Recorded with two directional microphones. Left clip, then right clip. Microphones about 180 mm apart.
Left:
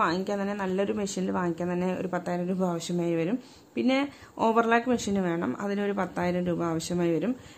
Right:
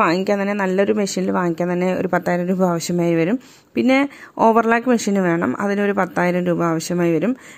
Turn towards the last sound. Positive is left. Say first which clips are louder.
# right 9 dB
turn(degrees=-35)  # may be behind; listen again after turning